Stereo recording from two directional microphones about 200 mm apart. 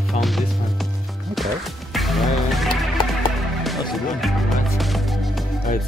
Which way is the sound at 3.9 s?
Centre (ahead or behind).